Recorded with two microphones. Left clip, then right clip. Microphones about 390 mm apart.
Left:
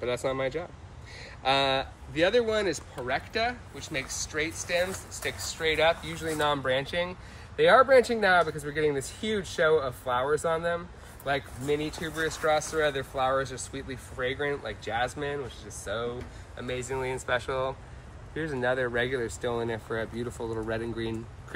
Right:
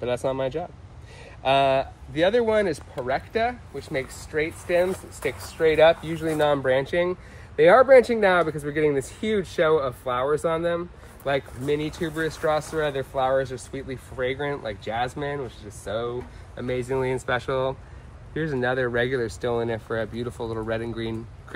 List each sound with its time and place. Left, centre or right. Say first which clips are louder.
0.1 s speech: right 4 dB; centre
20.3 s speech: right 3 dB; right
20.6 s speech: right 4 dB; centre